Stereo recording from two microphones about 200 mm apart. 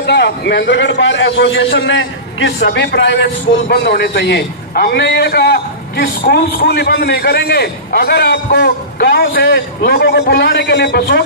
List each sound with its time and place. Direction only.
0.0 s a man's voice: 55° left (ahead or behind)